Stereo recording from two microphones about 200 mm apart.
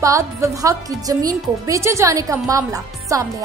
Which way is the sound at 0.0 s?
15° right (ahead or behind).